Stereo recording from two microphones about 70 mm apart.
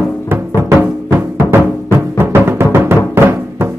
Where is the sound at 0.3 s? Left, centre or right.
Right.